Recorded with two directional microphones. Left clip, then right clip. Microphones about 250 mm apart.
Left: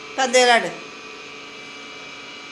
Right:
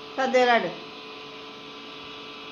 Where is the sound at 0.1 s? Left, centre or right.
Centre.